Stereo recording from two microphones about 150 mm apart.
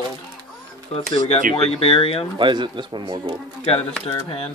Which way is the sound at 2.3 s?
35° right (ahead or behind).